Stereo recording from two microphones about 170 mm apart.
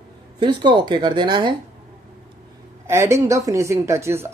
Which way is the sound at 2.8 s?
15° right (ahead or behind).